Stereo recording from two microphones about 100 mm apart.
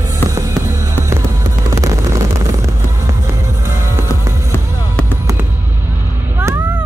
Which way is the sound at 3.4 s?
30° right (ahead or behind).